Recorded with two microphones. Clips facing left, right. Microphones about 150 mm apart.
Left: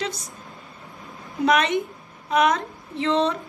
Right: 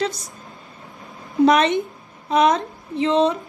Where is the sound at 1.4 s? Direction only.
30° right (ahead or behind); by 3.4 s 15° right (ahead or behind).